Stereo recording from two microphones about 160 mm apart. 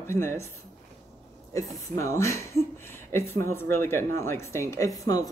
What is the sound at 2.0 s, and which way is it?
Speech, 20° left (ahead or behind).